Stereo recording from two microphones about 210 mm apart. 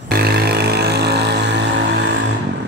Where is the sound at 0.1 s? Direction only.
50° right (ahead or behind).